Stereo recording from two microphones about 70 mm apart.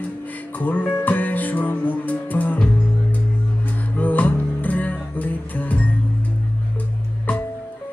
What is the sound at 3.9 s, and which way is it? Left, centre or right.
Music, left.